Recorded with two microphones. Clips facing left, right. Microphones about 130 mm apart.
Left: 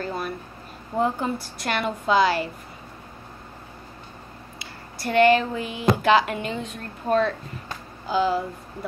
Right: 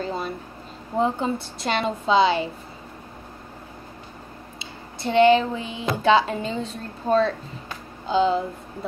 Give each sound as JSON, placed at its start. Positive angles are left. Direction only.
{"t": 0.0, "sound": "a sound", "side_deg": -25}
{"t": 0.9, "sound": "speech", "side_deg": -25}
{"t": 4.6, "sound": "speech", "side_deg": -25}